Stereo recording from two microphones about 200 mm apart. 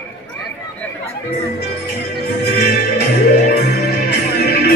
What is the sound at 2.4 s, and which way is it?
Music, 55° left (ahead or behind).